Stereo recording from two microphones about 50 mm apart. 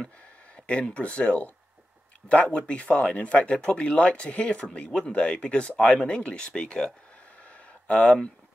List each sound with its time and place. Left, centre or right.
0.7 s speech: left
7.9 s speech: left